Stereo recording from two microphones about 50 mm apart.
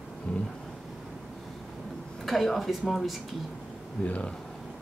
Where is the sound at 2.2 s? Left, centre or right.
Centre.